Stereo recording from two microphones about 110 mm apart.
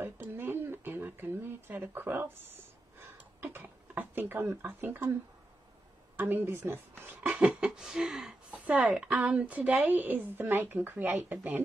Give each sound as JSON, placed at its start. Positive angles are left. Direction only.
{"t": 0.0, "sound": "a sound", "side_deg": -20}
{"t": 3.0, "sound": "speech", "side_deg": -20}
{"t": 6.1, "sound": "speech", "side_deg": -20}